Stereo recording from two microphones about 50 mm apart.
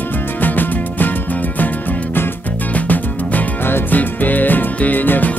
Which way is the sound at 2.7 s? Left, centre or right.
Left.